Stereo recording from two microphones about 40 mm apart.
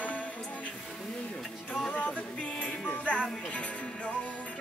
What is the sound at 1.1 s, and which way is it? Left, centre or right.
Music, left.